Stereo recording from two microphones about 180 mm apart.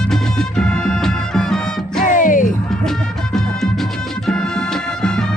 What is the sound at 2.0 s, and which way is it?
Music, 45° left (ahead or behind).